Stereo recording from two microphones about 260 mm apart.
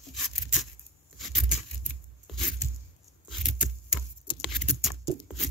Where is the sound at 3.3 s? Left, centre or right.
Centre.